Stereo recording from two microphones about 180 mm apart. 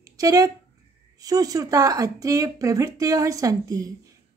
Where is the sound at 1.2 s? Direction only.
20° right (ahead or behind).